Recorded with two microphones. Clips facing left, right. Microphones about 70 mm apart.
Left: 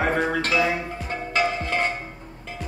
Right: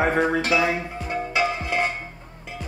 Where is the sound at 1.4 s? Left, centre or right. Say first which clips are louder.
Left 1 dB; centre.